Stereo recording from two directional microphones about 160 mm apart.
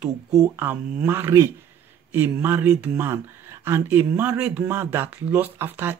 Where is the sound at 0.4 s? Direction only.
15° right (ahead or behind).